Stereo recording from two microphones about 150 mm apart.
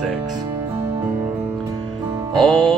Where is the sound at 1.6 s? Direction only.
25° right (ahead or behind).